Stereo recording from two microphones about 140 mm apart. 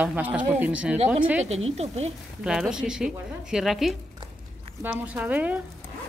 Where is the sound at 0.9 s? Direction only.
55° right (ahead or behind).